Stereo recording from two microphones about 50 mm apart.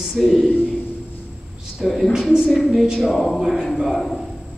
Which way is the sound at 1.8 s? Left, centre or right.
Centre.